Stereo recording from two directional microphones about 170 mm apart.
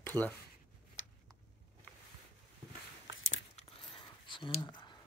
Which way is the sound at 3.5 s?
30° left (ahead or behind).